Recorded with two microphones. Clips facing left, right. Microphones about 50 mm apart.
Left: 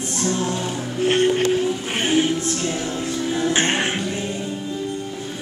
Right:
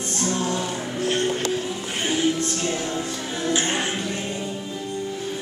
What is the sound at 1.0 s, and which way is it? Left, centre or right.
Music, left.